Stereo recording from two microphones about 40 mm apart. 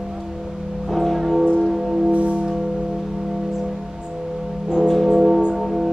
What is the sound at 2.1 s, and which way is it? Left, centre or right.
Music, right.